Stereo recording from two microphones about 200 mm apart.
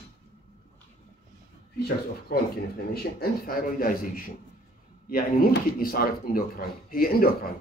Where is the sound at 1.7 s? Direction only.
50° left (ahead or behind).